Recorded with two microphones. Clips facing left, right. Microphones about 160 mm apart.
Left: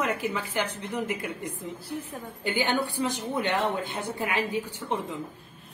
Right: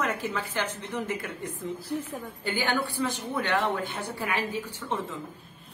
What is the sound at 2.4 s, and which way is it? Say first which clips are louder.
A woman's voice: left 2 dB; 20° left (ahead or behind).